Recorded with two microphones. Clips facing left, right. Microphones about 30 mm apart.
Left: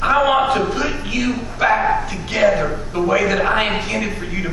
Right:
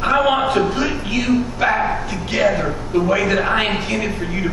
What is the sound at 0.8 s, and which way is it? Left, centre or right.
A man's voice, centre.